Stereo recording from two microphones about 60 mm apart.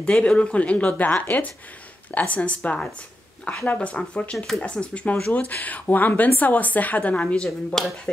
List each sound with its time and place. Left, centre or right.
0.0 s a woman's voice: centre
7.4 s speech: centre